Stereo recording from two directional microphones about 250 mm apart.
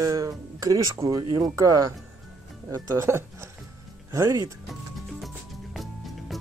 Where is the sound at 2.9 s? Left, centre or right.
Centre.